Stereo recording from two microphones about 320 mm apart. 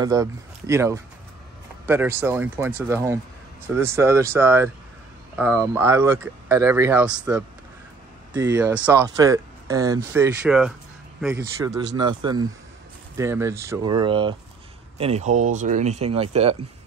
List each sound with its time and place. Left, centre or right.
0.0 s speech: centre